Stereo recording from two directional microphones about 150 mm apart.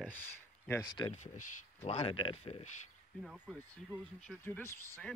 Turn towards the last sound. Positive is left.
turn(degrees=15)  # may be behind; listen again after turning